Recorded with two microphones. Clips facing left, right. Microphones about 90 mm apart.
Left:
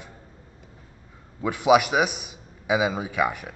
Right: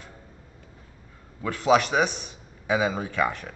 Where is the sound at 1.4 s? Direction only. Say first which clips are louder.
Left 2 dB; 15° left (ahead or behind).